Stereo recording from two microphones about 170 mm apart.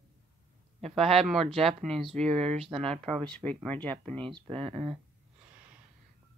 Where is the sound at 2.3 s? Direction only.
40° right (ahead or behind).